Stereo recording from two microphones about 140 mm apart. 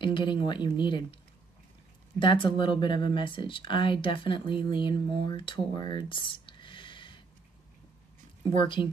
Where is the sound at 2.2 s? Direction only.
35° left (ahead or behind).